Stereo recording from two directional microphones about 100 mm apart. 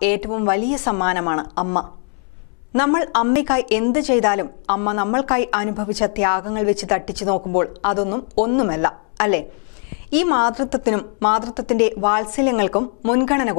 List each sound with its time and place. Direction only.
0.0 s a woman's voice: 15° left (ahead or behind)